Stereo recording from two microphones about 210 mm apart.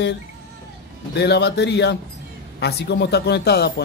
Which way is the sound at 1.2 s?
50° left (ahead or behind).